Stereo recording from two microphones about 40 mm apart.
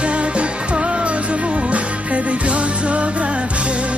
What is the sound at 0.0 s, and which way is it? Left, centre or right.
Music, right.